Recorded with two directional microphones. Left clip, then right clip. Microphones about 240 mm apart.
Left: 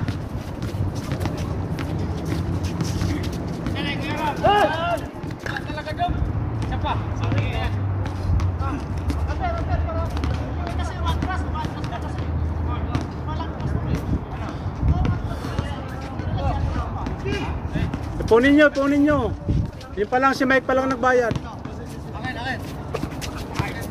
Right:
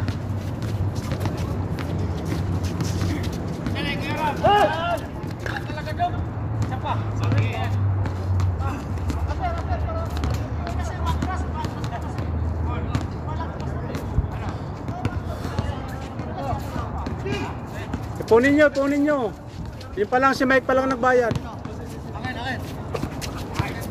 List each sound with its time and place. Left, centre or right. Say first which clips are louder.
2.8 s vehicle: left 1 dB; centre
3.7 s vehicle: even; right
4.4 s run: even; centre
18.3 s speech: left 1 dB; centre